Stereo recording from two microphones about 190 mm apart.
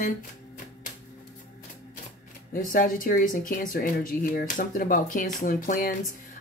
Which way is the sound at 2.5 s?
45° left (ahead or behind).